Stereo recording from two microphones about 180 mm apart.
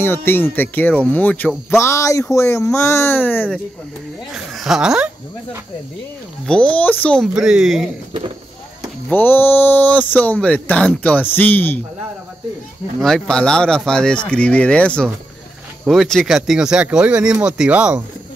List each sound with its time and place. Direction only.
0.0 s speech: 10° left (ahead or behind)
4.3 s speech: centre (ahead or behind)
6.4 s speech: 5° left (ahead or behind)
9.1 s speech: 10° left (ahead or behind)
13.0 s speech: 5° left (ahead or behind)